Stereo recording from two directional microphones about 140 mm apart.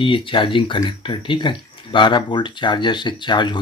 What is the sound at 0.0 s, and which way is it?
Speech, 40° left (ahead or behind).